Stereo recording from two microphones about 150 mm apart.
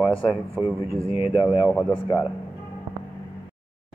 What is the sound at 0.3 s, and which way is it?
Speech, 15° right (ahead or behind).